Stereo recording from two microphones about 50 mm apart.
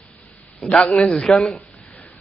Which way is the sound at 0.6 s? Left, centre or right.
Centre.